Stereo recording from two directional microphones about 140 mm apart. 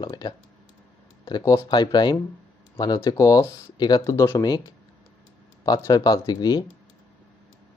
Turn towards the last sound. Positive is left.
turn(degrees=30)  # may be behind; listen again after turning